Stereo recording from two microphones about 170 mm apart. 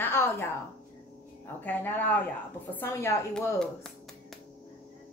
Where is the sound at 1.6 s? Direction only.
10° left (ahead or behind).